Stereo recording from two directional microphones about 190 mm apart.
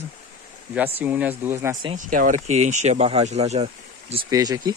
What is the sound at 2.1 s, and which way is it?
Speech, 45° right (ahead or behind).